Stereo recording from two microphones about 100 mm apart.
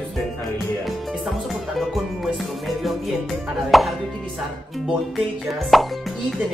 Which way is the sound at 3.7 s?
Centre (ahead or behind).